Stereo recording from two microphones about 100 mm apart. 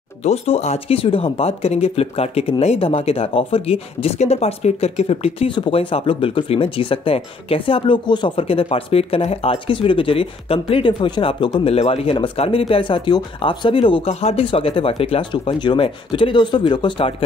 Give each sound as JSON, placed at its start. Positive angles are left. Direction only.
{"t": 0.2, "sound": "speech", "side_deg": 90}
{"t": 5.5, "sound": "speech", "side_deg": 65}
{"t": 10.9, "sound": "speech", "side_deg": 50}
{"t": 11.7, "sound": "speech", "side_deg": 75}